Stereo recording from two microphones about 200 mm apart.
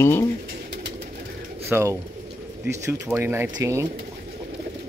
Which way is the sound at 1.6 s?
15° right (ahead or behind).